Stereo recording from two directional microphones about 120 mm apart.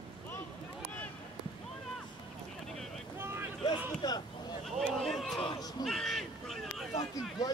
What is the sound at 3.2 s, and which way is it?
Boat, 20° right (ahead or behind).